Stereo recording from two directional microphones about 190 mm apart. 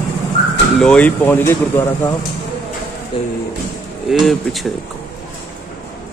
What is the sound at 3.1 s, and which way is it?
Speech, 25° left (ahead or behind).